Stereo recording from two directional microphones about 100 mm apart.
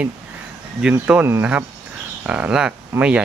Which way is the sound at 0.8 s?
10° right (ahead or behind).